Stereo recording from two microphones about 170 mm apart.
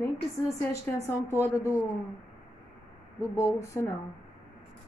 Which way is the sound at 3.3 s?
15° left (ahead or behind).